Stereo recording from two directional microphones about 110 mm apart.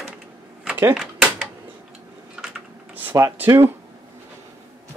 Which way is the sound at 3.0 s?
20° right (ahead or behind).